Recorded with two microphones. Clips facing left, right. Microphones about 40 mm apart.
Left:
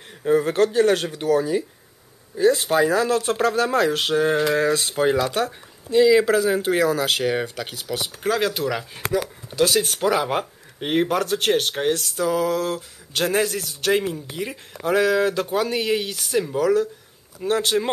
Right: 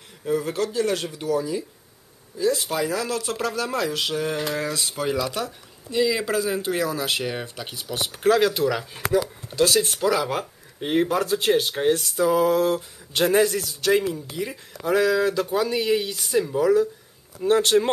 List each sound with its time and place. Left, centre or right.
0.2 s speech: left
5.9 s speech: left
6.2 s speech: left
8.2 s speech: centre
9.8 s speech: left
10.8 s speech: left
12.2 s a sound: centre
13.6 s speech: left
17.4 s speech: centre